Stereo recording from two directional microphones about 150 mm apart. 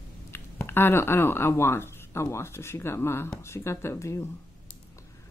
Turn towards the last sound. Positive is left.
turn(degrees=20)  # may be behind; listen again after turning